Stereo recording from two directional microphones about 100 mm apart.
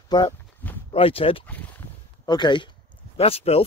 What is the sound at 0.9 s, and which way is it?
Speech, 70° left (ahead or behind).